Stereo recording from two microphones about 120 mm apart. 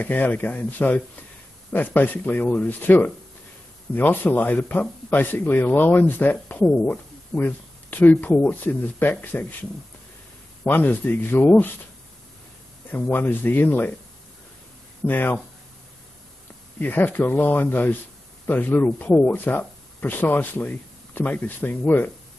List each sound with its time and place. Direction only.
0.0 s speech: 15° left (ahead or behind)
12.9 s speech: 15° left (ahead or behind)
15.0 s speech: 15° left (ahead or behind)
16.8 s speech: 15° left (ahead or behind)